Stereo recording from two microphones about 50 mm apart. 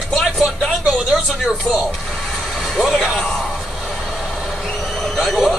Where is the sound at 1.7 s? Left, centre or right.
Left.